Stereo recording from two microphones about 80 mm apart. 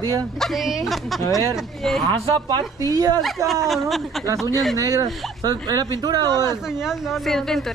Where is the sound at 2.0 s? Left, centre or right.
Right.